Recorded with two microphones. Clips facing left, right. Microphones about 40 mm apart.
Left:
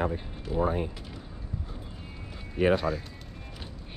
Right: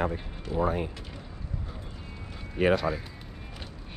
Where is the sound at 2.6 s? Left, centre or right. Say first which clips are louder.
Even; right.